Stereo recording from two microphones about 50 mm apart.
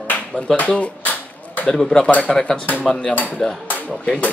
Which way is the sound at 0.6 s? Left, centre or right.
Left.